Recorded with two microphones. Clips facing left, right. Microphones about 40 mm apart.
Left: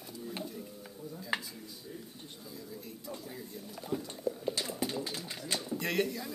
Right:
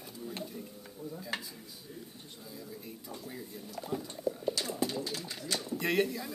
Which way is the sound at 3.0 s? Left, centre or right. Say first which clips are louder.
Left 1 dB; centre.